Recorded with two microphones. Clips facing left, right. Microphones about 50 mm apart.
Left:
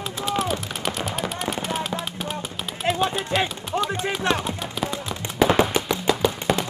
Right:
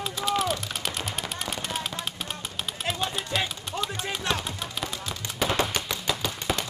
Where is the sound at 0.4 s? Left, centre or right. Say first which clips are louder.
Left 2 dB; centre.